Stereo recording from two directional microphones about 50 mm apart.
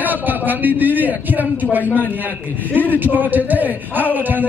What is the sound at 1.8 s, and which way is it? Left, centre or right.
Speech, left.